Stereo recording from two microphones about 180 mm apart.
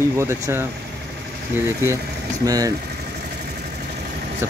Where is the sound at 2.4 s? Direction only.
20° right (ahead or behind).